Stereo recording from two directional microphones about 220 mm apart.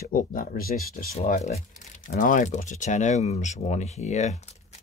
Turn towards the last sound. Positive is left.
turn(degrees=30)  # may be behind; listen again after turning